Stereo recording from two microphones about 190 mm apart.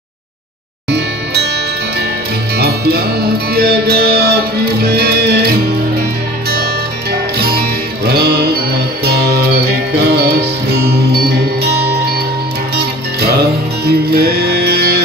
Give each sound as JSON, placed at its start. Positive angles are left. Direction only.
{"t": 0.8, "sound": "music", "side_deg": -60}
{"t": 2.5, "sound": "music", "side_deg": -55}
{"t": 6.5, "sound": "music", "side_deg": -55}